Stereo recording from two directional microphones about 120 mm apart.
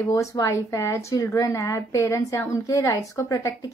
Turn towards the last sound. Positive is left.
turn(degrees=25)  # may be behind; listen again after turning